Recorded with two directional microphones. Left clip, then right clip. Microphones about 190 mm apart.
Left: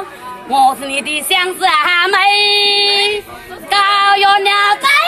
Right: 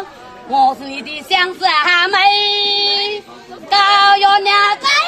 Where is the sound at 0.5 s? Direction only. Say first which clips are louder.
Left 2 dB; centre (ahead or behind).